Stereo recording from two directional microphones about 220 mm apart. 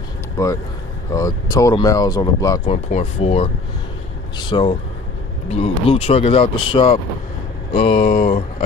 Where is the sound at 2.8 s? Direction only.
30° left (ahead or behind).